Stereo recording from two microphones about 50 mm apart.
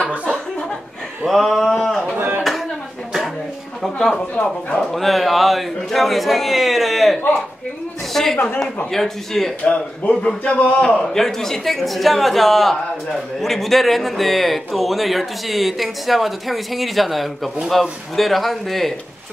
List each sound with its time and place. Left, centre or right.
0.3 s chuckle: centre
1.2 s a man's voice: centre
1.6 s a sound: centre
2.1 s a sound: right
3.8 s a man's voice: centre
9.7 s a man's voice: left
11.1 s a man's voice: centre